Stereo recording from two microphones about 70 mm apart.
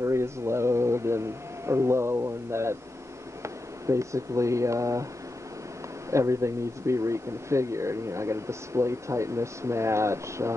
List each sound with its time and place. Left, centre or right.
0.0 s a sound: right
1.7 s speech: right
6.0 s speech: right